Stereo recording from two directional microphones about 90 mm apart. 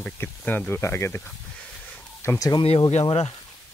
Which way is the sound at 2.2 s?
40° left (ahead or behind).